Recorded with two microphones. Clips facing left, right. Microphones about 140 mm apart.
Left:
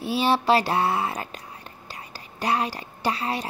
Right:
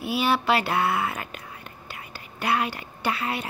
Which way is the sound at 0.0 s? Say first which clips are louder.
Left 2 dB; 30° left (ahead or behind).